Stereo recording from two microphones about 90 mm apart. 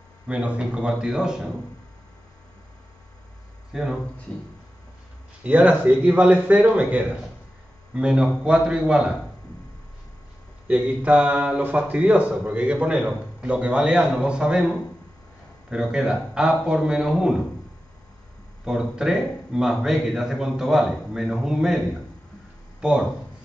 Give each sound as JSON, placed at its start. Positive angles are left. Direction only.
{"t": 0.3, "sound": "speech", "side_deg": -15}
{"t": 3.7, "sound": "a man's voice", "side_deg": -5}
{"t": 5.4, "sound": "speech", "side_deg": -15}
{"t": 10.7, "sound": "speech", "side_deg": -15}
{"t": 18.6, "sound": "a man's voice", "side_deg": -5}